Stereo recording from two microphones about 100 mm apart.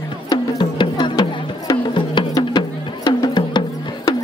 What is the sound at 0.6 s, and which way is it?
Music, 50° left (ahead or behind).